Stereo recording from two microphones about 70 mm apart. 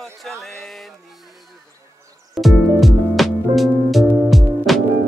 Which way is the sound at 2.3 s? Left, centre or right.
Centre.